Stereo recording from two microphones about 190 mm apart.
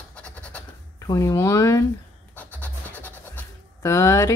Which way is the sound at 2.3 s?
10° left (ahead or behind).